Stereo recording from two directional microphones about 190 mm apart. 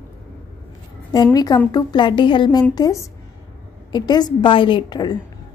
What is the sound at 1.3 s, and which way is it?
A woman's voice, 20° left (ahead or behind).